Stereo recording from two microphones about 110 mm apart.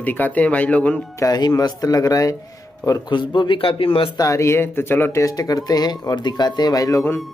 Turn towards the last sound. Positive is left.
turn(degrees=30)  # may be behind; listen again after turning